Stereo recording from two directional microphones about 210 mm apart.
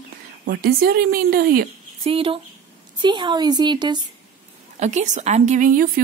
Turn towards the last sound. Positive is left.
turn(degrees=-40)  # may be behind; listen again after turning